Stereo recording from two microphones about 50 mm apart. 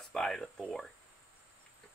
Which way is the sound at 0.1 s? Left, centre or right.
Centre.